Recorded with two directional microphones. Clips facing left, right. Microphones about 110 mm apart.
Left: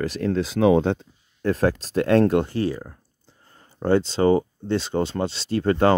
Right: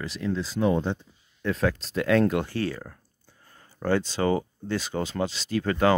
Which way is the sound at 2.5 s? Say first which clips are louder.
Left 4 dB; 20° left (ahead or behind).